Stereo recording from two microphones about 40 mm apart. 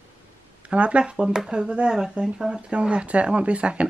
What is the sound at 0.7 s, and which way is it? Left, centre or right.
Speech, right.